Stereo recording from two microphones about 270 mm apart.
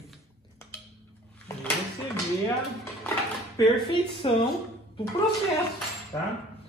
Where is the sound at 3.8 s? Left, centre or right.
Centre.